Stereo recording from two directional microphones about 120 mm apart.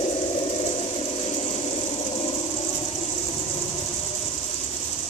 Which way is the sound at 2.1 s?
50° left (ahead or behind).